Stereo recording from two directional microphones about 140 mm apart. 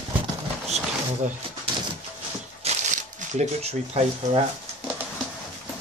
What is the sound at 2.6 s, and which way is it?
Crumpling, 60° right (ahead or behind).